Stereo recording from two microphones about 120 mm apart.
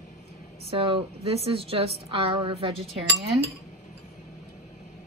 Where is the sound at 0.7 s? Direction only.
50° right (ahead or behind).